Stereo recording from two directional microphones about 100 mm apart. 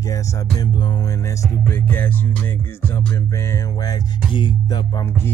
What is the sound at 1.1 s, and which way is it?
Music, 30° left (ahead or behind).